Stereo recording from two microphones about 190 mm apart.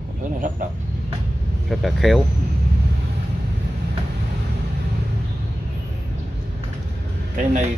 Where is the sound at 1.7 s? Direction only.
Centre (ahead or behind).